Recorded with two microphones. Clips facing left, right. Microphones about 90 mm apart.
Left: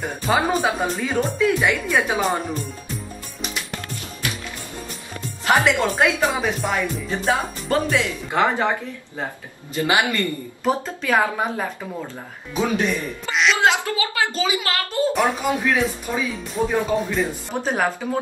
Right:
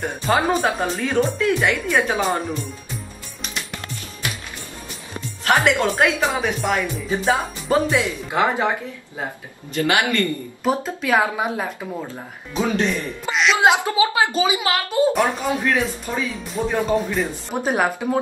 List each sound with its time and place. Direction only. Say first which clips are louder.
0.0 s speech: right 1 dB; centre (ahead or behind)
5.7 s speech: right 1 dB; 5° left (ahead or behind)
9.8 s speech: right 1 dB; 15° left (ahead or behind)
10.6 s speech: even; 5° right (ahead or behind)
12.5 s speech: even; 5° left (ahead or behind)
13.6 s a child's voice: right 3 dB; 15° right (ahead or behind)
15.1 s speech: even; centre (ahead or behind)